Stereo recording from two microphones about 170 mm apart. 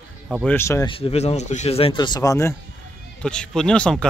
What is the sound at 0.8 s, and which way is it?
Speech, 30° left (ahead or behind).